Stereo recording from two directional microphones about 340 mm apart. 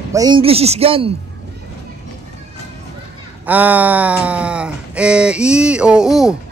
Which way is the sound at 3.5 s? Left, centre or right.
Centre.